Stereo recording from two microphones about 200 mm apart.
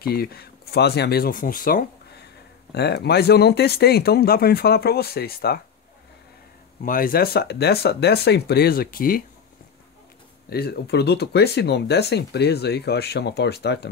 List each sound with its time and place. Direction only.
0.0 s speech: 50° left (ahead or behind)
6.8 s speech: 45° left (ahead or behind)
10.5 s speech: 55° left (ahead or behind)